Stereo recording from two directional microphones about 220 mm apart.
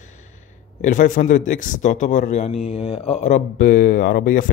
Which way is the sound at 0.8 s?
35° left (ahead or behind).